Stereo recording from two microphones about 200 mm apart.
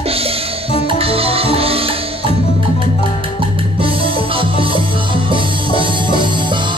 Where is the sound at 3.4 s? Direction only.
25° right (ahead or behind).